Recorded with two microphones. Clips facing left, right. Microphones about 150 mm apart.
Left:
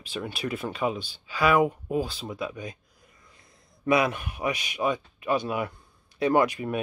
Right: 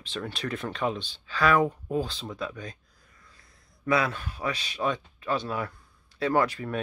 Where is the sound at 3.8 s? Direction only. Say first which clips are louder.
Left 3 dB; 15° left (ahead or behind).